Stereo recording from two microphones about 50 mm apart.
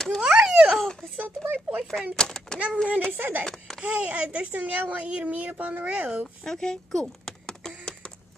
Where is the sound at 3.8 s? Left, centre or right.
Right.